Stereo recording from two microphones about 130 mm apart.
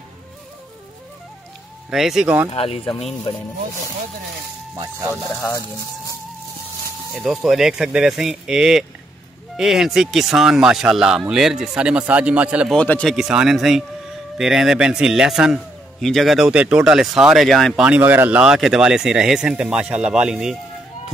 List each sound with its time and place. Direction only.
1.9 s a man's voice: 5° right (ahead or behind)
2.5 s speech: 50° left (ahead or behind)
7.2 s a man's voice: 5° right (ahead or behind)
12.7 s speech: 10° left (ahead or behind)
13.1 s a man's voice: 5° right (ahead or behind)
17.8 s a man's voice: 15° right (ahead or behind)